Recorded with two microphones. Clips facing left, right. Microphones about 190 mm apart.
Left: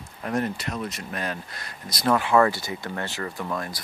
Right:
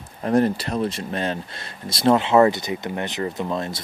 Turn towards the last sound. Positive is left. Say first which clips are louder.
# right 5 dB
turn(degrees=-25)  # may be behind; listen again after turning